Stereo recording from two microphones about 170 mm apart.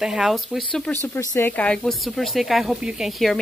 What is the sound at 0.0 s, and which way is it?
A woman's voice, 5° right (ahead or behind).